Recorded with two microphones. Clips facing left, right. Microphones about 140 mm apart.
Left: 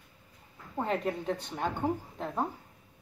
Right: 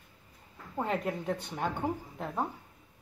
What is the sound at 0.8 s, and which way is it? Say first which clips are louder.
Speech: left 1 dB; 5° right (ahead or behind).